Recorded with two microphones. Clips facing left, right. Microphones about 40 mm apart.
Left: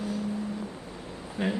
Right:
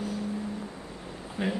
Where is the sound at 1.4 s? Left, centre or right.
Centre.